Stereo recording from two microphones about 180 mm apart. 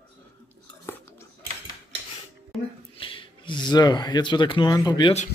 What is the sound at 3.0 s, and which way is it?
Speech, 30° left (ahead or behind).